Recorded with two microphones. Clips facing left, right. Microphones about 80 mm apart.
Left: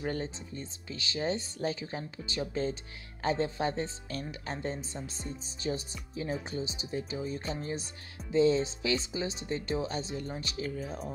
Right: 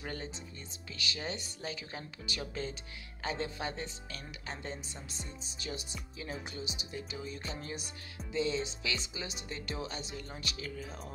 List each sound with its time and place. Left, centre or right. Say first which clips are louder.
0.0 s speech: left 7 dB; left